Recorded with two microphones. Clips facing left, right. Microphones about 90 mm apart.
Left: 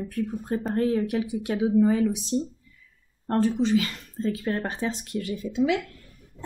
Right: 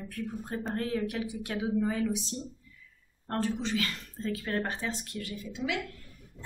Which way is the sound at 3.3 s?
15° left (ahead or behind).